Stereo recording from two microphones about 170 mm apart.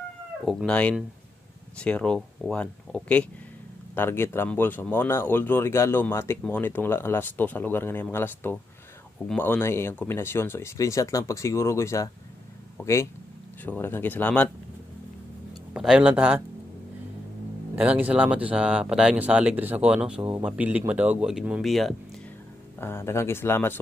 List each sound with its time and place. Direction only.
0.5 s speech: 5° left (ahead or behind)
15.7 s speech: 5° right (ahead or behind)
17.7 s speech: 10° right (ahead or behind)
22.8 s speech: 15° left (ahead or behind)